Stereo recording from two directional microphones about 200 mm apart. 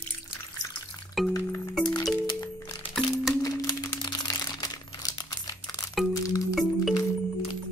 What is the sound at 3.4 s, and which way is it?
Crumpling, 20° left (ahead or behind).